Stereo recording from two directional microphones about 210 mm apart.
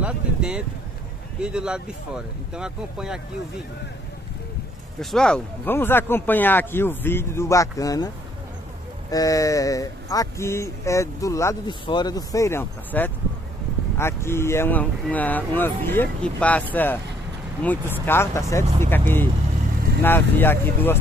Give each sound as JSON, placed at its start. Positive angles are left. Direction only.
{"t": 0.0, "sound": "a sound", "side_deg": -5}
{"t": 1.4, "sound": "speech", "side_deg": -5}
{"t": 5.1, "sound": "speech", "side_deg": 5}
{"t": 9.1, "sound": "speech", "side_deg": 15}
{"t": 18.0, "sound": "speech", "side_deg": 10}